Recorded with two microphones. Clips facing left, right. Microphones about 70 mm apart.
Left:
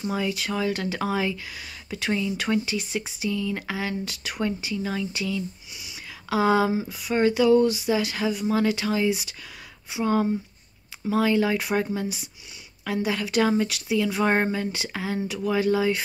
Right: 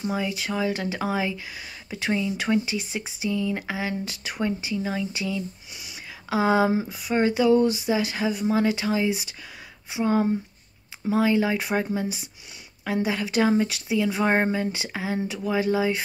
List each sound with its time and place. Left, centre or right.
0.1 s speech: right
6.7 s speech: right